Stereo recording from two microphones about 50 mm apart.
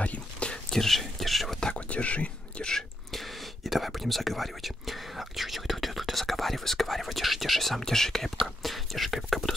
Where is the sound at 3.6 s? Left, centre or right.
Centre.